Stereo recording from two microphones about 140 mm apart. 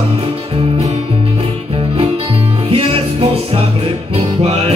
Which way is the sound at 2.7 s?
45° right (ahead or behind).